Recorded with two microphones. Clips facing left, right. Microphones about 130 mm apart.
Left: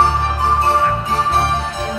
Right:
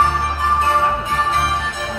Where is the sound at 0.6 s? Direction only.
35° left (ahead or behind).